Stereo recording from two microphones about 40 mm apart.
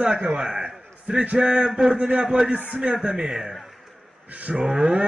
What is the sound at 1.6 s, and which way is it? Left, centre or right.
Speech, centre.